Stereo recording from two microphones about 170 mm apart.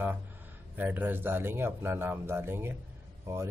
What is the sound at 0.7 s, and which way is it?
Speech, 10° right (ahead or behind).